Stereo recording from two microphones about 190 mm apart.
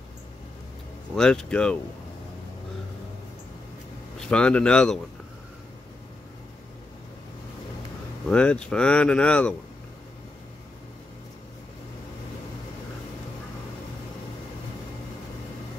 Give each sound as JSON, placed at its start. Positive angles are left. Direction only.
{"t": 1.1, "sound": "speech", "side_deg": 5}
{"t": 4.2, "sound": "speech", "side_deg": 5}
{"t": 8.3, "sound": "speech", "side_deg": 5}